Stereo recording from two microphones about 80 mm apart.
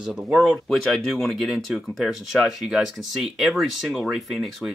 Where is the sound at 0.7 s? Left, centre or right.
Centre.